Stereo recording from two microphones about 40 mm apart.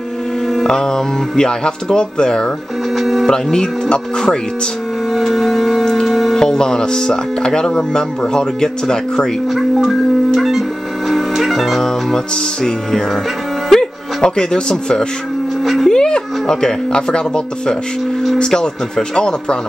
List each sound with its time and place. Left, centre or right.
0.7 s speech: centre
3.0 s speech: centre
3.3 s speech: centre
5.1 s music: centre
6.3 s speech: centre
9.5 s music: centre
13.7 s music: centre
14.2 s speech: centre
15.6 s speech: centre
15.9 s a sound: centre
18.4 s speech: centre